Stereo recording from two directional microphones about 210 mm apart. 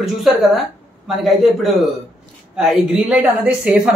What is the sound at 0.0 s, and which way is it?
Speech, centre (ahead or behind).